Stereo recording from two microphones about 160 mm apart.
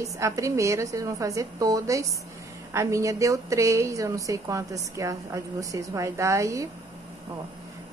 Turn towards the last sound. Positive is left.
turn(degrees=-20)  # may be behind; listen again after turning